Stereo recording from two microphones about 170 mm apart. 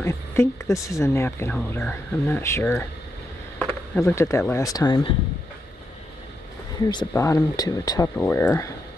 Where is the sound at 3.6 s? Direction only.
5° left (ahead or behind).